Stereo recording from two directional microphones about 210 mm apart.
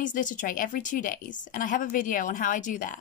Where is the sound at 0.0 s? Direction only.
40° left (ahead or behind).